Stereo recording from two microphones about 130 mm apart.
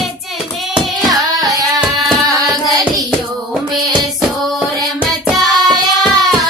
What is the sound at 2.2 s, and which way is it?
Hands, 30° right (ahead or behind).